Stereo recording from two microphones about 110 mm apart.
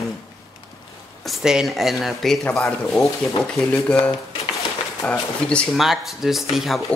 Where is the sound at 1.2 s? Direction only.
5° right (ahead or behind).